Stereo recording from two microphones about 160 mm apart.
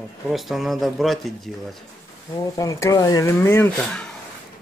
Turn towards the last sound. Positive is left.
turn(degrees=0)  # may be behind; listen again after turning